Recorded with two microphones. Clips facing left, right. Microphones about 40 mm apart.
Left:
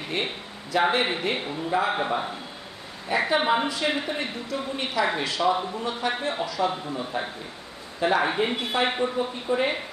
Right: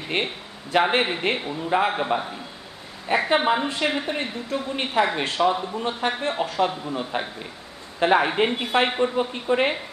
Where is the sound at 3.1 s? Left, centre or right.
Right.